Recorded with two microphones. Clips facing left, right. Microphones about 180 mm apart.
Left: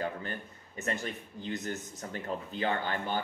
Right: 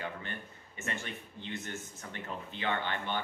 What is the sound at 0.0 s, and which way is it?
Speech, 40° left (ahead or behind).